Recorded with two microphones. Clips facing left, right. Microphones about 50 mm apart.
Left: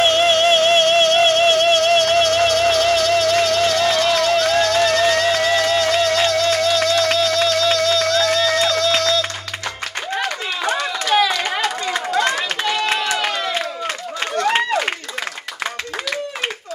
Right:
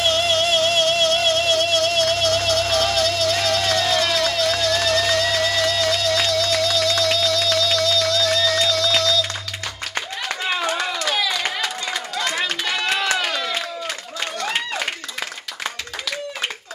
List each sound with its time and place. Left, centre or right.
0.0 s music: left
11.1 s a sound: left
12.9 s run: left
14.3 s run: left